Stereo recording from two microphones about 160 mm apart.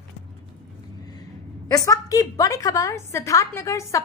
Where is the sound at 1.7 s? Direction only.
20° left (ahead or behind).